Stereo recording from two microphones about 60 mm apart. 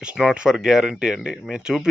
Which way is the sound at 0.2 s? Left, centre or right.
Centre.